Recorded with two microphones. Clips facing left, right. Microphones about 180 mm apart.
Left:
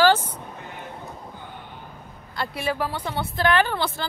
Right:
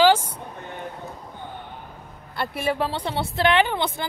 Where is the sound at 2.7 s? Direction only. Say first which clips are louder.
Right 2 dB; 25° right (ahead or behind).